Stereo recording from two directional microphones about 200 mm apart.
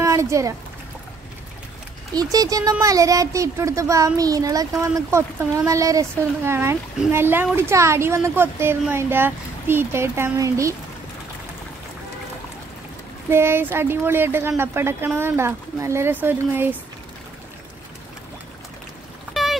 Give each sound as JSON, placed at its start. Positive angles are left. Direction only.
{"t": 0.0, "sound": "a sound", "side_deg": -15}
{"t": 2.3, "sound": "speech", "side_deg": -20}
{"t": 13.3, "sound": "speech", "side_deg": -10}